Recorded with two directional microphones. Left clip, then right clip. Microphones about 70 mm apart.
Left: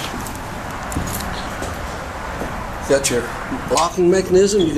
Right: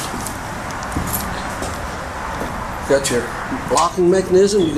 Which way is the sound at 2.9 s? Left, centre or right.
Centre.